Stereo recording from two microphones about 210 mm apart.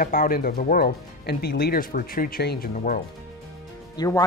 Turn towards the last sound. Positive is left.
turn(degrees=15)  # may be behind; listen again after turning